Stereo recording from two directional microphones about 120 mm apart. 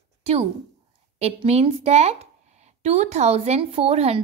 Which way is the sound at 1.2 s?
60° right (ahead or behind).